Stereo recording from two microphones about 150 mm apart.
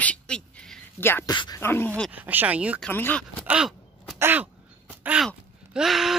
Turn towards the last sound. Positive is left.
turn(degrees=0)  # may be behind; listen again after turning